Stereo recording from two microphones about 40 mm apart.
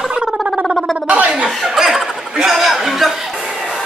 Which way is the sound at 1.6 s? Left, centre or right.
Centre.